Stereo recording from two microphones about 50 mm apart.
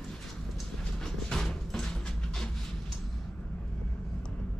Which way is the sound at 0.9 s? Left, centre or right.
Centre.